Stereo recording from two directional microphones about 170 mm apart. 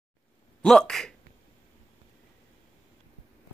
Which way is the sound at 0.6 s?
5° left (ahead or behind).